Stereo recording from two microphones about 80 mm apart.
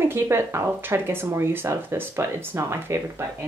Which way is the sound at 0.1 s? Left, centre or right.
Right.